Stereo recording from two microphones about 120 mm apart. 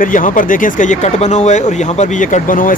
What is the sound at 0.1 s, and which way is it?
Speech, 90° left.